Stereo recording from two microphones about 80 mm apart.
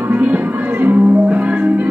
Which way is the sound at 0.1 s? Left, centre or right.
Right.